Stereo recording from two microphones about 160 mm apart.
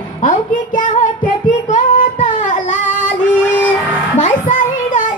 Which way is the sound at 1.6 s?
55° left (ahead or behind).